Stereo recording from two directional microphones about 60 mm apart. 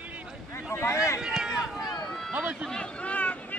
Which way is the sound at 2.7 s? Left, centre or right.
Centre.